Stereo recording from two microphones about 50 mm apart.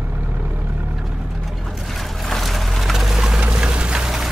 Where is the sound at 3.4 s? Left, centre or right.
Centre.